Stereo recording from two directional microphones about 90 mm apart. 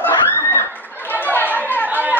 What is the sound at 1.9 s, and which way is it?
Chatter, 20° right (ahead or behind).